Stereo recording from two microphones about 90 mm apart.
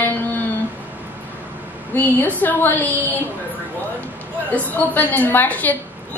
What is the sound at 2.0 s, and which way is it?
A woman's voice, 20° left (ahead or behind).